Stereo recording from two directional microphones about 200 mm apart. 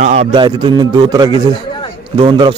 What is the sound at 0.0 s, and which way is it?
Speech, 35° right (ahead or behind).